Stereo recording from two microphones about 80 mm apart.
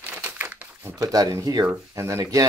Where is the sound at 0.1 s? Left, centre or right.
Centre.